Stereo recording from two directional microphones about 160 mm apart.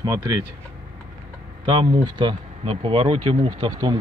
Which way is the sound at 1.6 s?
30° right (ahead or behind).